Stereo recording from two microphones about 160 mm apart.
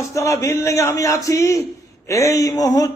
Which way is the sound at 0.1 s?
20° left (ahead or behind).